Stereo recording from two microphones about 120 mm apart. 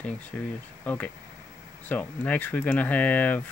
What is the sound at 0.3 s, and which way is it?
Speech, 10° left (ahead or behind).